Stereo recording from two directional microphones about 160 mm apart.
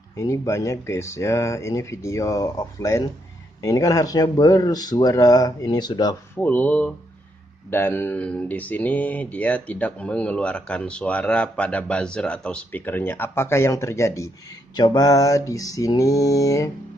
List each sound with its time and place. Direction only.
0.1 s a man's voice: 20° left (ahead or behind)
6.3 s a man's voice: 10° left (ahead or behind)